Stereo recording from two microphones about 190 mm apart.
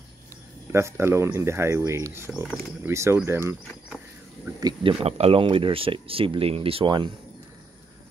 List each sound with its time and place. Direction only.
0.7 s speech: 15° right (ahead or behind)
2.4 s speech: centre (ahead or behind)
2.9 s speech: 15° right (ahead or behind)
4.6 s speech: 20° right (ahead or behind)
5.0 s speech: 35° right (ahead or behind)